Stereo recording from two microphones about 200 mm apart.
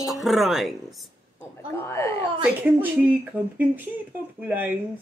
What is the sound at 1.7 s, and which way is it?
Speech, 15° left (ahead or behind).